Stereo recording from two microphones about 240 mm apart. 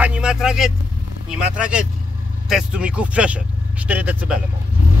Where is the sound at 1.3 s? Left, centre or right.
Centre.